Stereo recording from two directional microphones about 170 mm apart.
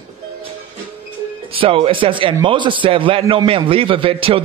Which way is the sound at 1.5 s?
30° right (ahead or behind).